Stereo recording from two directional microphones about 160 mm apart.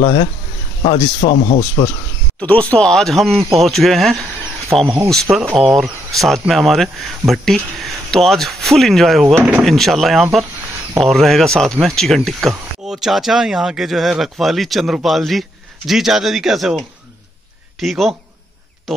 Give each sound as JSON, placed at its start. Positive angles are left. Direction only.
{"t": 0.0, "sound": "speech", "side_deg": 35}
{"t": 2.4, "sound": "speech", "side_deg": 10}